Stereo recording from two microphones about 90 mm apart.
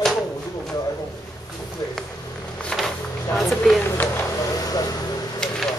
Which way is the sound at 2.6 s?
Centre (ahead or behind).